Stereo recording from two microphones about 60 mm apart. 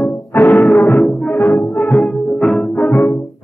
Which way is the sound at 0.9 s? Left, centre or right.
Centre.